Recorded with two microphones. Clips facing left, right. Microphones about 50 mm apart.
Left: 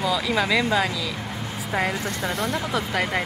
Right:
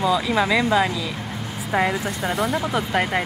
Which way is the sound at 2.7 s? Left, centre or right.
Right.